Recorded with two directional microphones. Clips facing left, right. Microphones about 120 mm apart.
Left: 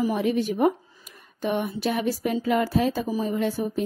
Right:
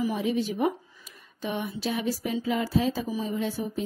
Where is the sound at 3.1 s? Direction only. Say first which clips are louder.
Left 4 dB; 55° left (ahead or behind).